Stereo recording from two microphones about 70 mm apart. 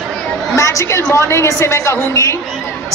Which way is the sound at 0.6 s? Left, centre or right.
Left.